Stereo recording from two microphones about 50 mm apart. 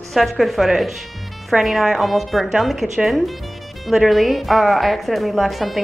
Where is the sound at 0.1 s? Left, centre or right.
Centre.